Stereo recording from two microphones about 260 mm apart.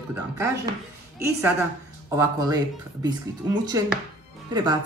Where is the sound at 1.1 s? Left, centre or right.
Centre.